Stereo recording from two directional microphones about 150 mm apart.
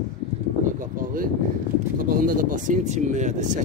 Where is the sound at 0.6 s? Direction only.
60° right (ahead or behind).